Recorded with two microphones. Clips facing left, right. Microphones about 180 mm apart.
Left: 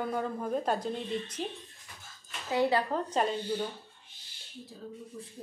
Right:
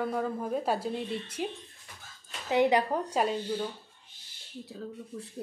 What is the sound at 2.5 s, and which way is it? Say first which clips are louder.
Speech: right 3 dB; 20° right (ahead or behind).